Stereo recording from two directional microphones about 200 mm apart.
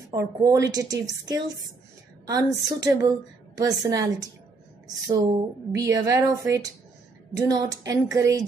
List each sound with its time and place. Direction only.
0.1 s a woman's voice: 15° right (ahead or behind)